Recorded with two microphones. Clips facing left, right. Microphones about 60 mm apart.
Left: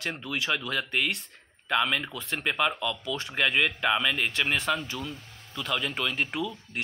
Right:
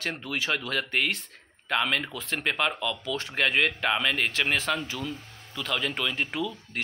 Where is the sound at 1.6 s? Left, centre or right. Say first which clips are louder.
Even; centre.